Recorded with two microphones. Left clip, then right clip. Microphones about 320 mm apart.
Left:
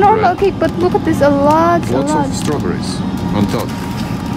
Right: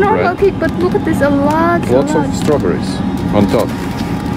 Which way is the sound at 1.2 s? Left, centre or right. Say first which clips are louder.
Left 3 dB; left.